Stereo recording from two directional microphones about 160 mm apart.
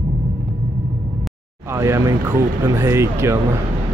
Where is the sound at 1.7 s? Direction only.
20° right (ahead or behind).